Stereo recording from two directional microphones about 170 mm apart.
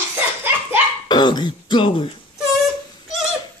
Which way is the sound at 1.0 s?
25° left (ahead or behind).